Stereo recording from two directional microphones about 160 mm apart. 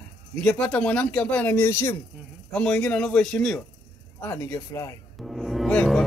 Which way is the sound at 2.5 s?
5° left (ahead or behind).